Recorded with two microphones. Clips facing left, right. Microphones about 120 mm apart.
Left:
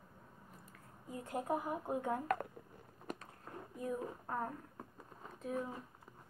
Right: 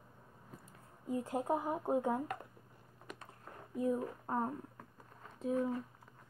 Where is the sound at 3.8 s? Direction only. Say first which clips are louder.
Right 6 dB; 25° right (ahead or behind).